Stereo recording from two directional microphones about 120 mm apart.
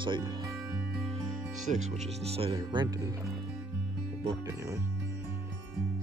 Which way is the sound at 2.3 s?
50° right (ahead or behind).